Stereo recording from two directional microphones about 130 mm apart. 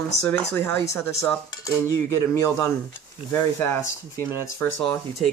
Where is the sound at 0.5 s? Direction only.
20° left (ahead or behind).